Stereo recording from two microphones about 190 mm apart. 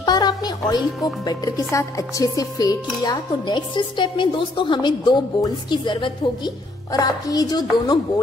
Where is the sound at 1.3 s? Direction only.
20° left (ahead or behind).